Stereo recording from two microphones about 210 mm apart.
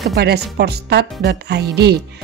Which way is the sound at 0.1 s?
50° right (ahead or behind).